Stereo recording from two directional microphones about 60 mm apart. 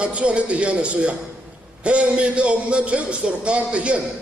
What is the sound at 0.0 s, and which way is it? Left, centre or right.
A man's voice, centre.